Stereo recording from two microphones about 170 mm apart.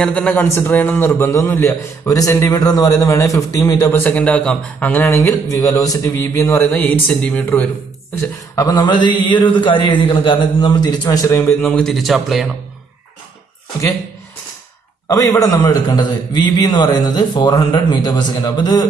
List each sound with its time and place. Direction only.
0.0 s a man's voice: 10° left (ahead or behind)
6.7 s a man's voice: 10° left (ahead or behind)
8.2 s a man's voice: 20° left (ahead or behind); by 12.4 s centre (ahead or behind)
15.0 s a man's voice: 20° left (ahead or behind)